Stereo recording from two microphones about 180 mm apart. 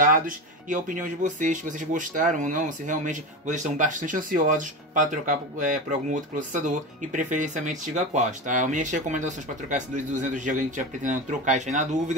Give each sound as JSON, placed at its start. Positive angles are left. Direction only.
{"t": 0.7, "sound": "speech", "side_deg": -45}